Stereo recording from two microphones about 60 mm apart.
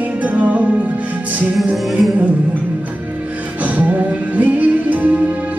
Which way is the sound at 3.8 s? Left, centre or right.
Right.